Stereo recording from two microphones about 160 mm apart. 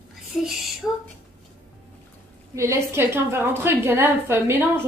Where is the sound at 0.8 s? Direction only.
10° left (ahead or behind).